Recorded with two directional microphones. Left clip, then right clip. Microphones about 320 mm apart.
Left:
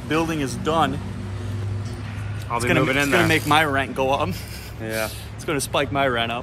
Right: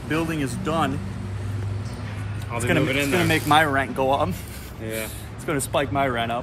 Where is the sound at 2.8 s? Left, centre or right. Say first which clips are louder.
Left 3 dB; centre.